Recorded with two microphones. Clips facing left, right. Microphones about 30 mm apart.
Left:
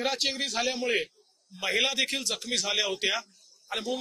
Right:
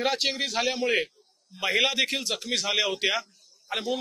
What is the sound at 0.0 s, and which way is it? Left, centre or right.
A man's voice, centre.